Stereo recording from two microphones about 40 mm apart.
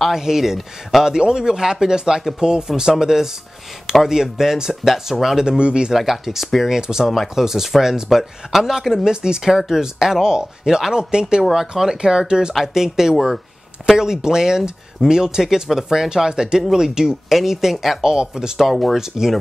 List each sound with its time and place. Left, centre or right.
0.1 s speech: centre
1.1 s speech: centre
5.6 s speech: right
5.9 s speech: centre
6.8 s speech: centre
18.0 s speech: centre
18.7 s speech: centre
18.9 s speech: centre